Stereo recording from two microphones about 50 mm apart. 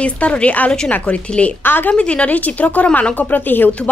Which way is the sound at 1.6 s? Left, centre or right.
Left.